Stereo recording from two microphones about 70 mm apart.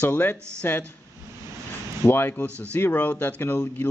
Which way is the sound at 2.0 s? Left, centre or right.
Left.